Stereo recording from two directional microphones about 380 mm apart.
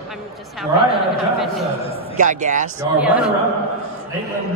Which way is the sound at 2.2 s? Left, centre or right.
Centre.